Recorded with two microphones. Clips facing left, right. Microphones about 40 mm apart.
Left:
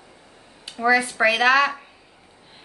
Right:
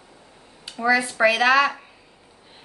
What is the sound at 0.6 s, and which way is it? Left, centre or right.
Speech, centre.